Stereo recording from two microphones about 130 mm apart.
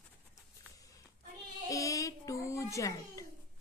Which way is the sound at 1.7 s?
25° left (ahead or behind).